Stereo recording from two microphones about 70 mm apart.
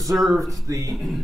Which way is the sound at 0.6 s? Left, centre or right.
Right.